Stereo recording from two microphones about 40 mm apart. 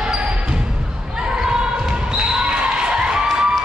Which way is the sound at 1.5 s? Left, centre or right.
Right.